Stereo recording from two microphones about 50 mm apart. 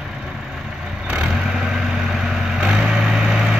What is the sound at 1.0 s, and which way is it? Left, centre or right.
Vehicle, centre.